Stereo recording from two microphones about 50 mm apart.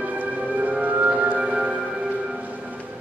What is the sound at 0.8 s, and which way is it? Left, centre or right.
Music, right.